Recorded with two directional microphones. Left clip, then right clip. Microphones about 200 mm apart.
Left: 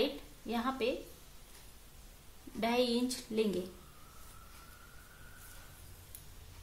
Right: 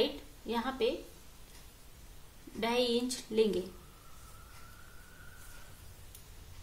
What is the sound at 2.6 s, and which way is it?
Speech, 5° left (ahead or behind).